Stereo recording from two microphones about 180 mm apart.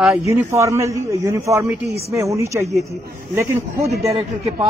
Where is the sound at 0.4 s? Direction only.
15° right (ahead or behind).